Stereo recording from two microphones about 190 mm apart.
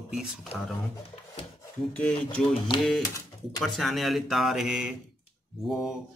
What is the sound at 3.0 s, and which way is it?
Speech, 15° left (ahead or behind).